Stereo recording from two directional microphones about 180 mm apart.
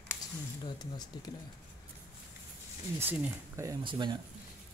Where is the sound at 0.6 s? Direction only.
25° left (ahead or behind).